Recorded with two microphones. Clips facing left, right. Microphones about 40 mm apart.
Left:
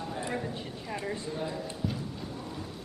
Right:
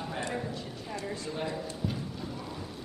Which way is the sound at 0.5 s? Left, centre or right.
Left.